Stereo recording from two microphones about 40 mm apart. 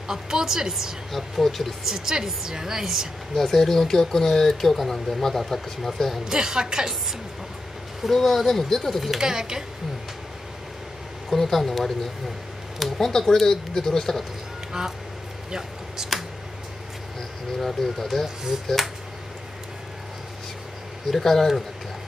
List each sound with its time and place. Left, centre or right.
0.1 s a woman's voice: centre
1.1 s speech: centre
1.9 s a woman's voice: centre
3.3 s speech: centre
6.2 s a woman's voice: centre
8.1 s speech: centre
9.1 s a woman's voice: centre
11.2 s speech: centre
12.7 s a sound: centre
13.0 s speech: centre
16.1 s a sound: centre
17.6 s speech: centre
21.2 s speech: centre